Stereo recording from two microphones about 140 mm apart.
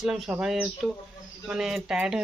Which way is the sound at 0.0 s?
5° right (ahead or behind).